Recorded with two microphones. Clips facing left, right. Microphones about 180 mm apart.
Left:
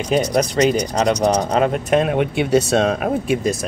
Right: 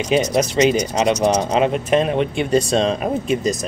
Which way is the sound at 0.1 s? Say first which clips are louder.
Even; 5° right (ahead or behind).